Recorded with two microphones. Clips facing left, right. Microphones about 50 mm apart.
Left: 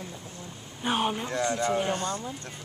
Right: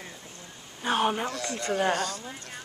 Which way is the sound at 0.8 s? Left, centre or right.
Centre.